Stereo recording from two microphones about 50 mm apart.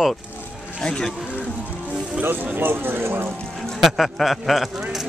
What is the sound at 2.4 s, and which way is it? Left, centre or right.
Speech, right.